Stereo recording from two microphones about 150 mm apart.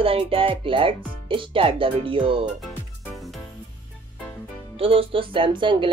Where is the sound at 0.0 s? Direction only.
40° right (ahead or behind).